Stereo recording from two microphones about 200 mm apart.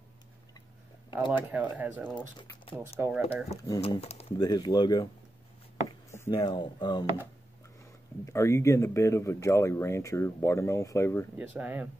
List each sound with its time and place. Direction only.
1.3 s speech: 10° right (ahead or behind)
2.3 s speech: 20° left (ahead or behind)
2.8 s speech: 10° right (ahead or behind)
3.8 s speech: 30° left (ahead or behind)
5.9 s a sound: 10° left (ahead or behind)
6.3 s speech: 25° left (ahead or behind)
8.3 s speech: 15° left (ahead or behind)
11.3 s speech: 5° right (ahead or behind)